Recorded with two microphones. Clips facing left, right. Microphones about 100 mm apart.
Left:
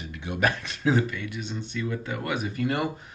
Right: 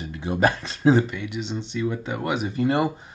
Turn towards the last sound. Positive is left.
turn(degrees=-25)  # may be behind; listen again after turning